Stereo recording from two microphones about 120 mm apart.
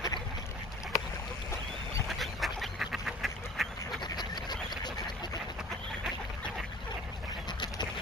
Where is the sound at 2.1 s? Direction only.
Centre (ahead or behind).